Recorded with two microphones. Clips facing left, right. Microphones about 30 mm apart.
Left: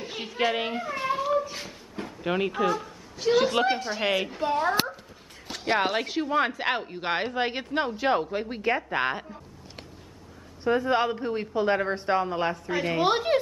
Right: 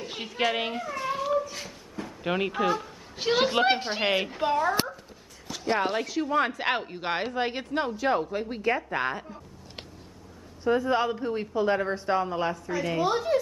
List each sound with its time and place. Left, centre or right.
0.0 s a child's voice: centre
1.0 s a sound: centre
1.4 s a sound: left
2.2 s speech: centre
3.2 s a woman's voice: centre
3.6 s a woman's voice: right
4.0 s a woman's voice: centre
4.6 s speech: left
6.2 s speech: centre
7.0 s speech: centre; by 9.2 s left
10.8 s a woman's voice: left
13.0 s a woman's voice: left